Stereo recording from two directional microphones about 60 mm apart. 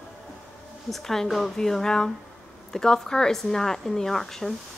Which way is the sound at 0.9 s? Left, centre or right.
Centre.